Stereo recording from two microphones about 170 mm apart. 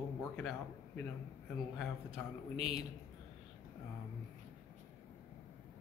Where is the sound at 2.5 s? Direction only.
35° right (ahead or behind).